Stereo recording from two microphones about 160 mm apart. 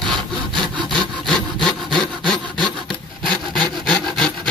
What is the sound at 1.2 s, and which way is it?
Wood, centre (ahead or behind).